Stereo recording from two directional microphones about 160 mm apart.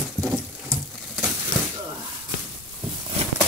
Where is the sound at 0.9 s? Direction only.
Centre (ahead or behind).